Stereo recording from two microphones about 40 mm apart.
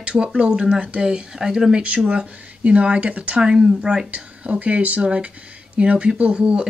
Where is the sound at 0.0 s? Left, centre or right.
Right.